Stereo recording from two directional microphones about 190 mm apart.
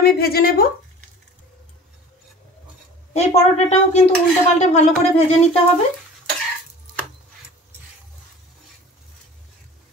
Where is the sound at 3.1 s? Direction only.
35° left (ahead or behind).